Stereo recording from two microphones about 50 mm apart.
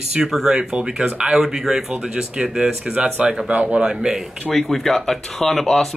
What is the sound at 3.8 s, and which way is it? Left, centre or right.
Speech, centre.